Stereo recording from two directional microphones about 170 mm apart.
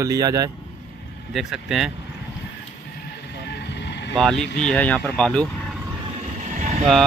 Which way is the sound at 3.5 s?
85° left.